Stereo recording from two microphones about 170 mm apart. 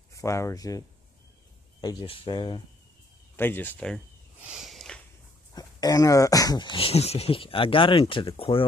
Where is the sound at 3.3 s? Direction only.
10° left (ahead or behind).